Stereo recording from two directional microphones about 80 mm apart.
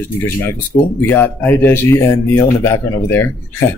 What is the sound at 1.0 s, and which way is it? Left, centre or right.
Speech, left.